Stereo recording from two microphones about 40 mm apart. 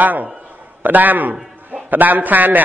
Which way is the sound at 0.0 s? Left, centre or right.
Right.